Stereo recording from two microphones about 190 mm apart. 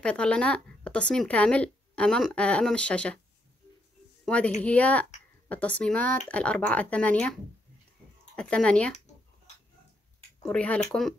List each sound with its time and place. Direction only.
0.0 s speech: 5° left (ahead or behind)
4.6 s speech: 5° left (ahead or behind)
8.4 s speech: 5° left (ahead or behind)
10.4 s speech: 5° left (ahead or behind)